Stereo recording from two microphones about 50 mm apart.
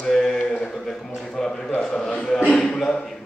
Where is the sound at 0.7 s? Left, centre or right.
Centre.